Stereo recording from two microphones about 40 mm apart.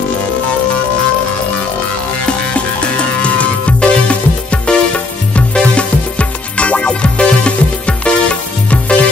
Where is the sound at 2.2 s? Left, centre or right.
Left.